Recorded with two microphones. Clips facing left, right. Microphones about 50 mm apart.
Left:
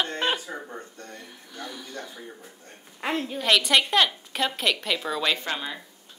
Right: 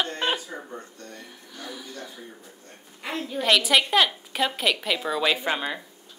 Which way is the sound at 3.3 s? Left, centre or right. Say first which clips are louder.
Right 2 dB; centre.